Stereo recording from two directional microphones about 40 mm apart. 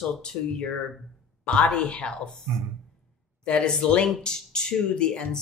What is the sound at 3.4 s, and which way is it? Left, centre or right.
A woman's voice, left.